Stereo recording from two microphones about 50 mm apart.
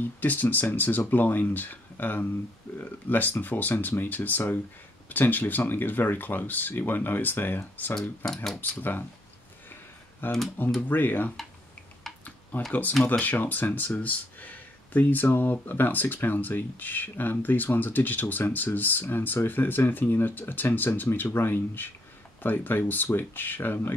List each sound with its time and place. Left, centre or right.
0.0 s speech: left
10.2 s speech: left
12.5 s speech: left